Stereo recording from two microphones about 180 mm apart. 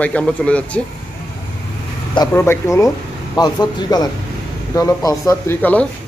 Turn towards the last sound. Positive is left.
turn(degrees=10)  # may be behind; listen again after turning